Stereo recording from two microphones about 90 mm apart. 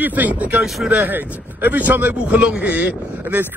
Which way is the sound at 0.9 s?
20° right (ahead or behind).